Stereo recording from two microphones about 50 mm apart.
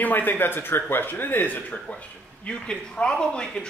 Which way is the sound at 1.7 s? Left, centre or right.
Left.